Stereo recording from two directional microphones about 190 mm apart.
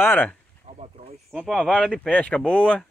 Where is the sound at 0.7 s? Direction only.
35° right (ahead or behind).